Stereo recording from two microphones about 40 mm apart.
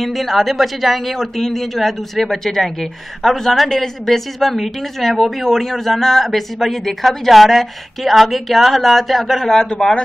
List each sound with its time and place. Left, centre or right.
0.0 s a woman's voice: centre